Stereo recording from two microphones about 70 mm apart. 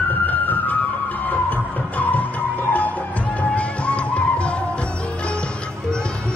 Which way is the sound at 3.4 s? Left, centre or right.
Centre.